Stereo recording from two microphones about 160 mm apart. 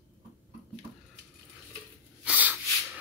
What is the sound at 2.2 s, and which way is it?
Snort, 10° right (ahead or behind).